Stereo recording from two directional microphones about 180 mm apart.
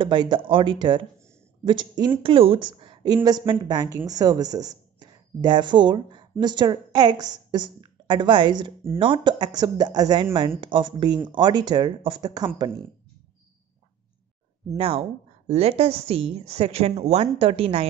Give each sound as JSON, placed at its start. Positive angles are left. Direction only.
{"t": 0.0, "sound": "a woman's voice", "side_deg": -25}
{"t": 14.8, "sound": "a woman's voice", "side_deg": -35}